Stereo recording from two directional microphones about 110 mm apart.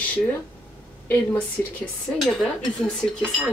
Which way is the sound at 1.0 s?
15° left (ahead or behind).